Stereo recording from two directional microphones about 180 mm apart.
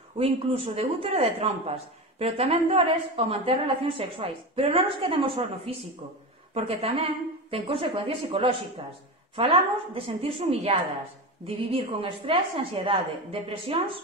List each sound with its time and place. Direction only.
0.2 s speech: 35° right (ahead or behind)